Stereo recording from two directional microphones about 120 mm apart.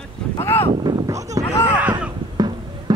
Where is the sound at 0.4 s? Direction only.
20° left (ahead or behind).